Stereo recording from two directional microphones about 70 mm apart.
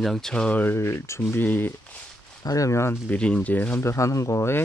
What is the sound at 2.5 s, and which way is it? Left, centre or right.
Speech, left.